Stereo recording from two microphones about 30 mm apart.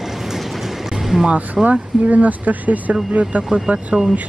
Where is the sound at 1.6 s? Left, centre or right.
Centre.